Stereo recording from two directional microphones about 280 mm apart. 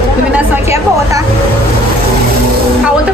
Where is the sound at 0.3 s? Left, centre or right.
Centre.